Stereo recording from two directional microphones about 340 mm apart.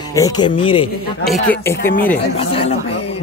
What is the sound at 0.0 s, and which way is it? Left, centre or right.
Speech, centre.